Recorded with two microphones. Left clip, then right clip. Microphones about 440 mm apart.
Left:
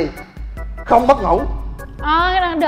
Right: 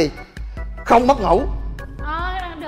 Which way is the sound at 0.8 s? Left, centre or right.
Right.